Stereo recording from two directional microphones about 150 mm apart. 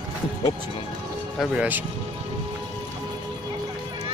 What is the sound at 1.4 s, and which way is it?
Speech, 10° right (ahead or behind).